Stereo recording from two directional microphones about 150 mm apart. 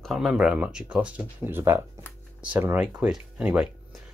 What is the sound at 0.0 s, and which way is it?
Speech, centre (ahead or behind).